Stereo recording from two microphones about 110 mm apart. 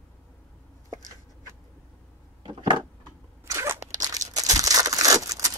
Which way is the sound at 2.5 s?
40° right (ahead or behind).